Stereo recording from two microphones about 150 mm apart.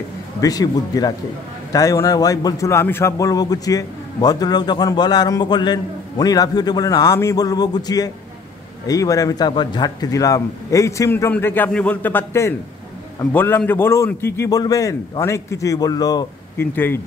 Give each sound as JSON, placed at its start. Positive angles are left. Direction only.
{"t": 0.4, "sound": "a man's voice", "side_deg": 25}
{"t": 16.7, "sound": "a man's voice", "side_deg": 15}